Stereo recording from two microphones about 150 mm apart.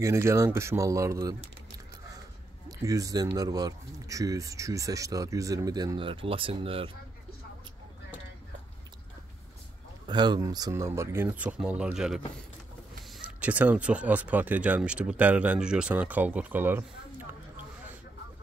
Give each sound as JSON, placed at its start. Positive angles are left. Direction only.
{"t": 0.0, "sound": "speech", "side_deg": -20}
{"t": 2.8, "sound": "speech", "side_deg": -20}
{"t": 10.0, "sound": "speech", "side_deg": -30}